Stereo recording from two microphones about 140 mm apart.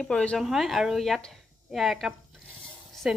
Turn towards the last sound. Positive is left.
turn(degrees=0)  # may be behind; listen again after turning